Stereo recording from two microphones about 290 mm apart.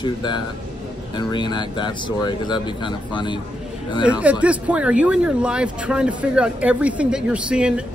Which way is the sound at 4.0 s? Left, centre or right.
Centre.